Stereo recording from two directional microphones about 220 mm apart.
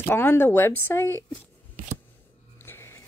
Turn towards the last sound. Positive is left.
turn(degrees=10)  # may be behind; listen again after turning